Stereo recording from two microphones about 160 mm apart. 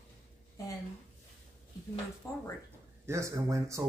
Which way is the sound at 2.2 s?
20° left (ahead or behind).